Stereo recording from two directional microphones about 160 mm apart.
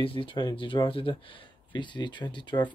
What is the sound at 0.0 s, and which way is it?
Speech, 35° left (ahead or behind).